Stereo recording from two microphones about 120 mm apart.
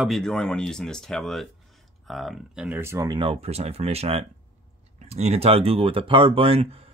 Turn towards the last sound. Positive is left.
turn(degrees=-55)  # may be behind; listen again after turning